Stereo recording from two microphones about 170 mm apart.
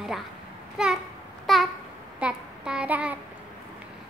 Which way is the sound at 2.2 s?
5° right (ahead or behind).